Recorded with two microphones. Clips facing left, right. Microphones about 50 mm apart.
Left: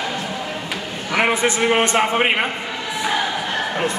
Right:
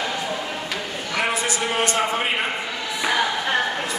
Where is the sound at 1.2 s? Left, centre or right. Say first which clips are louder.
Left 6 dB; left.